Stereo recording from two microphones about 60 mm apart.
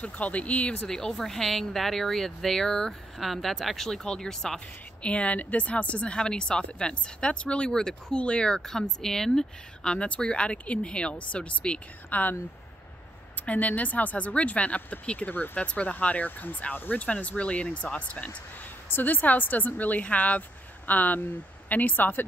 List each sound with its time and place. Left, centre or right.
0.0 s speech: left
0.8 s speech: centre
5.0 s speech: left
8.5 s speech: centre; by 12.2 s left
13.5 s speech: left
15.6 s speech: centre
18.9 s speech: left